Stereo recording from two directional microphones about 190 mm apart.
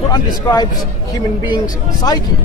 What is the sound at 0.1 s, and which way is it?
Speech, 20° left (ahead or behind).